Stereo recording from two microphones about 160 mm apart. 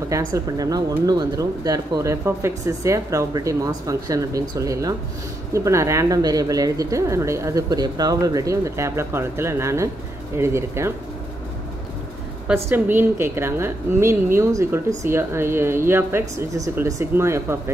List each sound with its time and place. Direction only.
0.1 s a woman's voice: 20° right (ahead or behind)
12.6 s a woman's voice: 15° right (ahead or behind)